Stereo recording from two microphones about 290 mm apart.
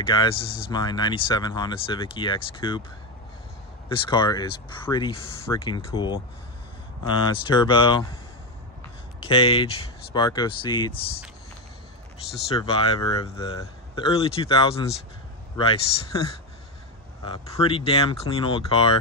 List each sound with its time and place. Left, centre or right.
0.0 s speech: centre
3.9 s speech: centre
9.2 s speech: centre
12.4 s speech: centre
17.2 s speech: centre